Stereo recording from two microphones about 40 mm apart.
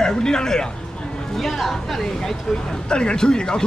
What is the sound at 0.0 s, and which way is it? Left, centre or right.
Speech, centre.